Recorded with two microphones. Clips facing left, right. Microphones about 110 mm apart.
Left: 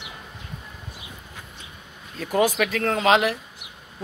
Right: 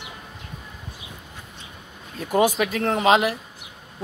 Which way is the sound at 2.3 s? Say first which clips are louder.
Right 1 dB; 20° right (ahead or behind).